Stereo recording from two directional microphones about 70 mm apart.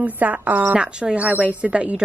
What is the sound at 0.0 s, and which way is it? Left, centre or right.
A woman's voice, right.